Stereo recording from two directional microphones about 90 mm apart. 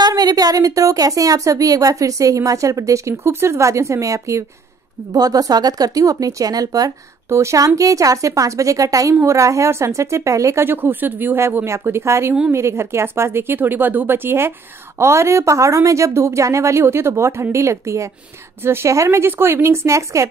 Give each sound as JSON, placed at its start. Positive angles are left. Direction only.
{"t": 0.0, "sound": "a woman's voice", "side_deg": -45}